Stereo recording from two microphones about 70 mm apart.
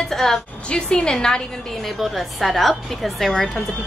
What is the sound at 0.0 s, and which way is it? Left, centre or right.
A woman's voice, centre.